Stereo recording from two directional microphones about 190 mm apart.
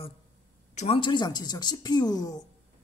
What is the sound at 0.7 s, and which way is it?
A woman's voice, 30° left (ahead or behind).